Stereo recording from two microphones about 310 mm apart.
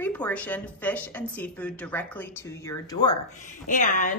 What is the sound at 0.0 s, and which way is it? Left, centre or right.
Speech, centre.